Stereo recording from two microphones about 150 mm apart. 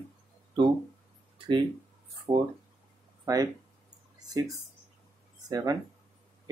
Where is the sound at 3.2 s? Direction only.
25° right (ahead or behind).